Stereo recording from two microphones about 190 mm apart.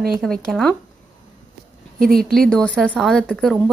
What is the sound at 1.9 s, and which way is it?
Speech, 50° right (ahead or behind).